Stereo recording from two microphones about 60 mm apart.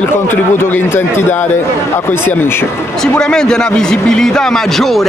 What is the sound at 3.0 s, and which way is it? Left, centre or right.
A man's voice, centre.